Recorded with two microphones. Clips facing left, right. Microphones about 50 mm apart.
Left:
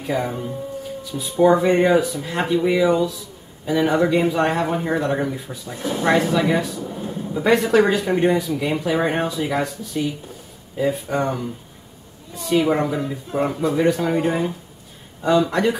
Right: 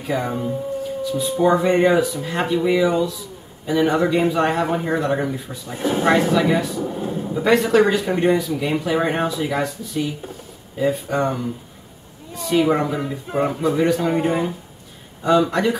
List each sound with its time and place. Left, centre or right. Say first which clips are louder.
0.0 s speech: right 1 dB; centre
5.8 s speech: right 4 dB; right
6.0 s speech: even; centre
6.8 s speech: right 4 dB; right
7.1 s a sound: right 2 dB; centre
7.4 s speech: even; centre
12.4 s speech: right 1 dB; centre